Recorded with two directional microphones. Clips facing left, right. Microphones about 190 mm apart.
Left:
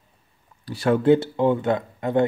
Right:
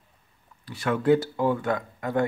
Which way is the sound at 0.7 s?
35° left (ahead or behind).